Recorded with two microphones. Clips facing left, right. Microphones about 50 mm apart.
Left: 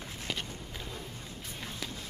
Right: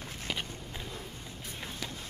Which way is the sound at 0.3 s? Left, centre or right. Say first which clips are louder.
Right 1 dB; centre.